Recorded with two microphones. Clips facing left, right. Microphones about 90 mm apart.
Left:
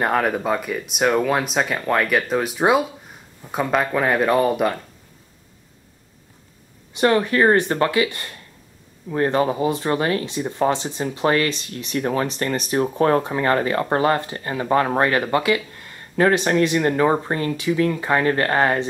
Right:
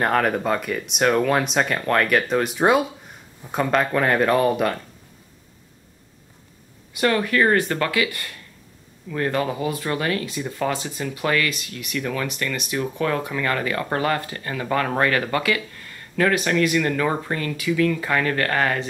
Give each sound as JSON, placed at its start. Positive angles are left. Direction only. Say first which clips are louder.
{"t": 0.0, "sound": "speech", "louder": "even", "side_deg": 0}
{"t": 6.9, "sound": "speech", "louder": "left 3 dB", "side_deg": 25}